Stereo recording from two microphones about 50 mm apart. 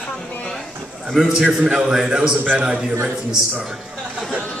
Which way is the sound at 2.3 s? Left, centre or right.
Right.